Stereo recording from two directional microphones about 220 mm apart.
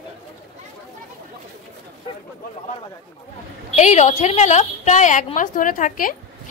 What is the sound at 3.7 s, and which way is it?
A woman's voice, 30° left (ahead or behind).